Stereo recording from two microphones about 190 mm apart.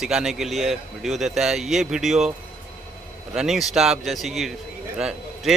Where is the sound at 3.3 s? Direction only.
Centre (ahead or behind).